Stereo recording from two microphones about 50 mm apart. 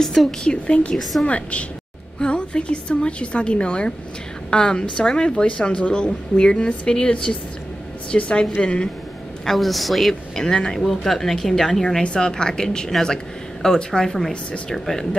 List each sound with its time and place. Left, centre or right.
0.0 s speech: centre
0.4 s a woman's voice: centre
9.5 s speech: centre